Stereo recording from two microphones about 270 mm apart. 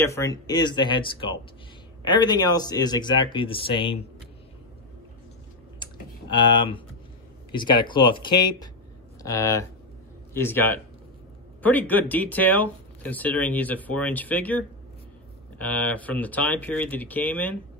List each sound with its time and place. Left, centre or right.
0.0 s speech: centre
5.8 s typing: centre
7.5 s speech: centre